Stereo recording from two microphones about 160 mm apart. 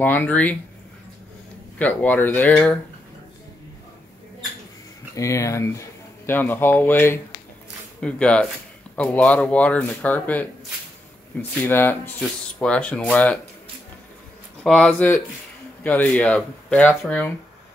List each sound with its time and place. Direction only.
0.0 s speech: 10° left (ahead or behind)
1.8 s speech: 10° left (ahead or behind)
5.1 s speech: 20° left (ahead or behind)
11.6 s speech: 15° left (ahead or behind)
14.6 s speech: 5° left (ahead or behind)